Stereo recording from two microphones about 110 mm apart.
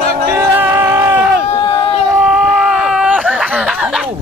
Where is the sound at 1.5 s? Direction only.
60° left (ahead or behind).